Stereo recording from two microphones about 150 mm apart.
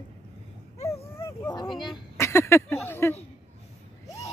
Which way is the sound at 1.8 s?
20° left (ahead or behind).